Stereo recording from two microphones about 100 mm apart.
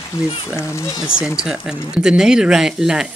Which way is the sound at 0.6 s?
30° left (ahead or behind).